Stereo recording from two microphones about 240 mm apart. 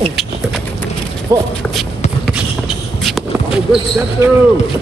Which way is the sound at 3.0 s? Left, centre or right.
Centre.